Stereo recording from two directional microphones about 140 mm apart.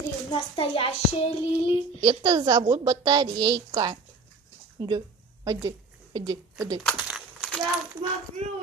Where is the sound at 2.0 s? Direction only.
30° right (ahead or behind).